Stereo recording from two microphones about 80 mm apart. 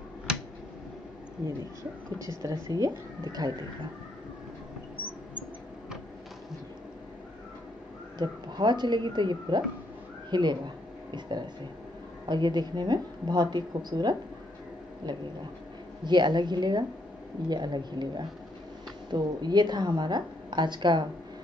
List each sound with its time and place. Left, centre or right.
2.2 s speech: right
8.2 s a woman's voice: right